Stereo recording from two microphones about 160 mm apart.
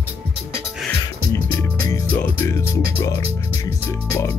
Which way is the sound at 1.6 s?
15° left (ahead or behind).